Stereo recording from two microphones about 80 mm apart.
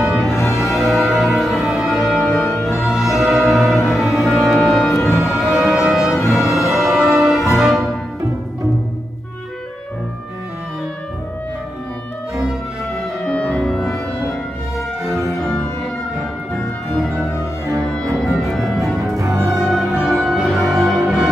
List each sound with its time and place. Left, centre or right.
0.0 s music: centre
4.9 s music: left
5.2 s music: centre
13.3 s music: centre
13.6 s music: centre
18.1 s music: centre
19.1 s music: right
19.4 s music: centre